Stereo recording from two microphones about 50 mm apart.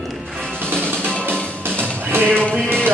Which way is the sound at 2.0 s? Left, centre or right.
Right.